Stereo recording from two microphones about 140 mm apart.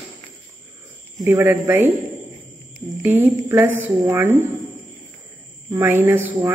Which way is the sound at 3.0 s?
15° right (ahead or behind).